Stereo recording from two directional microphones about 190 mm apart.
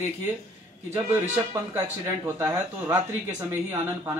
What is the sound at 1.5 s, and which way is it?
Speech, 10° right (ahead or behind).